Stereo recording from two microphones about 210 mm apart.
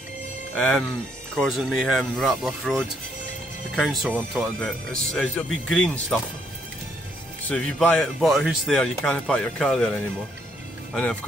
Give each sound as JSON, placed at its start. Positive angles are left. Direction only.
{"t": 0.6, "sound": "speech", "side_deg": 5}
{"t": 7.4, "sound": "speech", "side_deg": 5}